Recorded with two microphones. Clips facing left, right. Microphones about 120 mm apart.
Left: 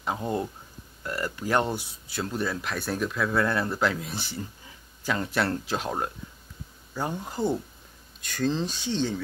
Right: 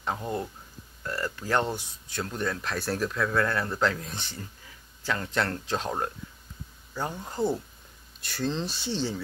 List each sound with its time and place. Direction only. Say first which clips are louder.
0.0 s speech: left 2 dB; 20° left (ahead or behind)
7.3 s speech: right 1 dB; centre (ahead or behind)